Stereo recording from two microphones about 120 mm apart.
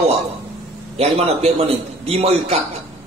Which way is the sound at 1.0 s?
60° right (ahead or behind).